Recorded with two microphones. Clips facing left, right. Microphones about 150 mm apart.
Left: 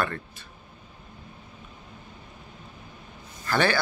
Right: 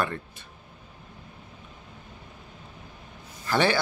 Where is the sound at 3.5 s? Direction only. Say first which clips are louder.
Right 1 dB; 25° right (ahead or behind).